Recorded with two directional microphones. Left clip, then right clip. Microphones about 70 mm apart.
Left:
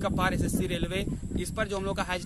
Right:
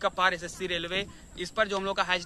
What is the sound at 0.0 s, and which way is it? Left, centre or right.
Speech, left.